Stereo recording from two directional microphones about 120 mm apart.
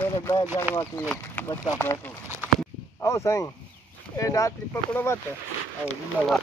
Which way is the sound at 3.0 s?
25° left (ahead or behind).